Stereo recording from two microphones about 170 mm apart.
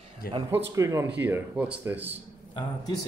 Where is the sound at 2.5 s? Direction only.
25° left (ahead or behind).